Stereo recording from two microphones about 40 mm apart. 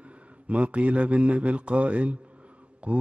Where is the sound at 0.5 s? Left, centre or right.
Right.